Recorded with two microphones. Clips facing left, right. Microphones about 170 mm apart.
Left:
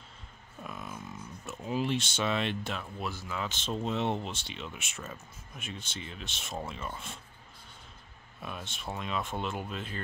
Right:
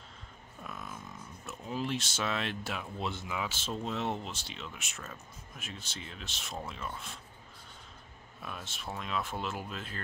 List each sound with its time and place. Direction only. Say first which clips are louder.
0.7 s a sound: left 2 dB; centre (ahead or behind)
1.4 s speech: left 4 dB; 5° left (ahead or behind)
3.0 s speech: right 1 dB; 25° right (ahead or behind)
3.3 s speech: left 1 dB; 10° right (ahead or behind)
8.4 s speech: left 2 dB; centre (ahead or behind)